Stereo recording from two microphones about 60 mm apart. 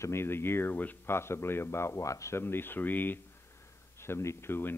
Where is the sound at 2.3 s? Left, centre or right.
Left.